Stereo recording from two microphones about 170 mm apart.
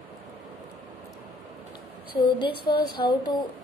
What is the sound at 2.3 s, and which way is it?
Speech, 30° left (ahead or behind).